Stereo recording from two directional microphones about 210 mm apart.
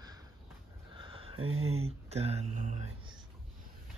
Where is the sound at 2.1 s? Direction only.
30° right (ahead or behind).